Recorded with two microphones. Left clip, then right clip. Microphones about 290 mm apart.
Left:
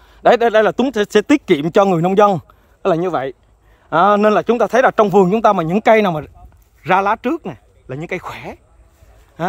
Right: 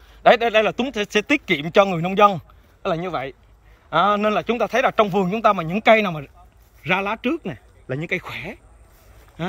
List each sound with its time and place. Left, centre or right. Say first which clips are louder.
0.1 s a man's voice: left 3 dB; left